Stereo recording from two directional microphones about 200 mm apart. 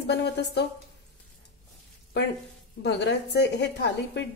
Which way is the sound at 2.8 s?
55° left (ahead or behind).